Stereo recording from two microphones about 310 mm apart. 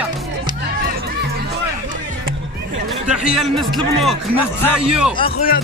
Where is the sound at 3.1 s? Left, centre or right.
Centre.